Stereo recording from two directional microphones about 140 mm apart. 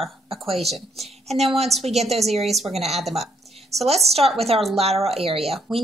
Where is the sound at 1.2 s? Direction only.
50° right (ahead or behind).